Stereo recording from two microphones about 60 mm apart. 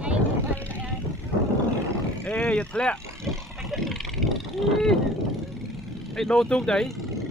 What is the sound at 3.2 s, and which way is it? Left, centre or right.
Wild animals, centre.